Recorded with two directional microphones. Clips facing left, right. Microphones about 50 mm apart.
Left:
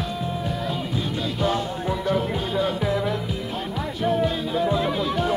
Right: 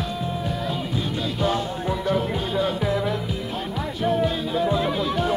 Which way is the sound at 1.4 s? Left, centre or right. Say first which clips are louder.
Even; left.